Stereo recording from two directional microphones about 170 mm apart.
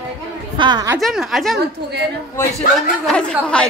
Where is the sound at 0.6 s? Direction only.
25° right (ahead or behind).